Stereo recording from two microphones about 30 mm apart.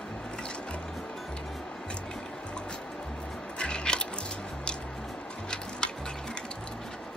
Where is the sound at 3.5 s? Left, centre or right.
Left.